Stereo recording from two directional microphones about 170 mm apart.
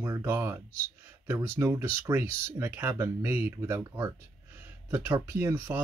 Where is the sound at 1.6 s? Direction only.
15° right (ahead or behind).